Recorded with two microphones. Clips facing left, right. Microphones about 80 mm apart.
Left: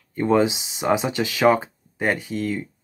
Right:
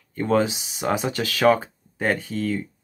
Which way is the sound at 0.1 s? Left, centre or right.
Centre.